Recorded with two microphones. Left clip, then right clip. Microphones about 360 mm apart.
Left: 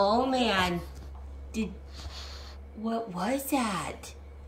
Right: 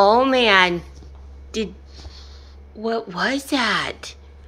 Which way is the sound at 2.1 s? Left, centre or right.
Left.